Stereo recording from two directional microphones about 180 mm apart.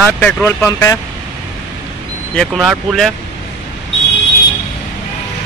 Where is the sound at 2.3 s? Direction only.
Centre (ahead or behind).